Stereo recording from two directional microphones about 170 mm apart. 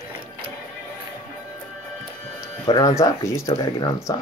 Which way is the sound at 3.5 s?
30° left (ahead or behind).